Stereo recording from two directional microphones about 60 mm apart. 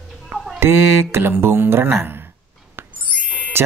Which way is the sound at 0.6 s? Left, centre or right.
Right.